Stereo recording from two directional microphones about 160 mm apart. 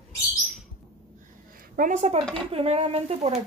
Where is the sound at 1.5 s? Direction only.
55° right (ahead or behind).